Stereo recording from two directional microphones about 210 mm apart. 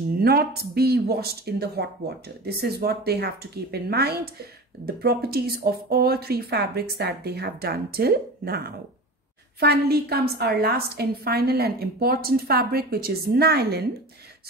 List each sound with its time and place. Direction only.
0.2 s speech: 45° right (ahead or behind)